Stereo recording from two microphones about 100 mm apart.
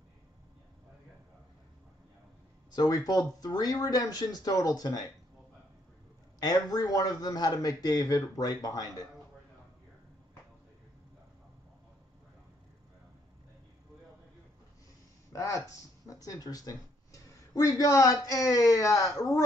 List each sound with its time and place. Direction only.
2.7 s speech: 40° left (ahead or behind)
6.4 s speech: 40° left (ahead or behind)
15.3 s speech: 30° left (ahead or behind)